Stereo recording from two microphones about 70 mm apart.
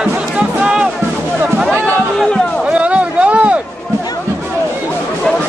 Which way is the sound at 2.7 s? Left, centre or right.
Centre.